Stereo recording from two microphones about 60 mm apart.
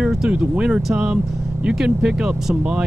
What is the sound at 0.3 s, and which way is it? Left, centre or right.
Speech, centre.